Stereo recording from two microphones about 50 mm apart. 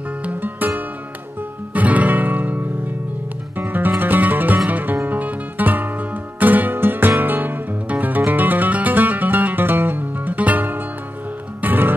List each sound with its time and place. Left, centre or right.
0.2 s music: right